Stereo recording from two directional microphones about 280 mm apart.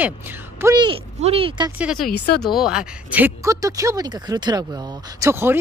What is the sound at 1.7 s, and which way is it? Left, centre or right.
Speech, centre.